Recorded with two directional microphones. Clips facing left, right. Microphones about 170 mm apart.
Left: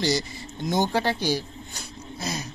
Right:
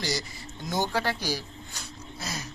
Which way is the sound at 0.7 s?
25° left (ahead or behind).